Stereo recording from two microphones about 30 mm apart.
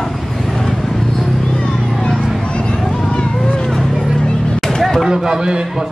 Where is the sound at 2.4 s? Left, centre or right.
Left.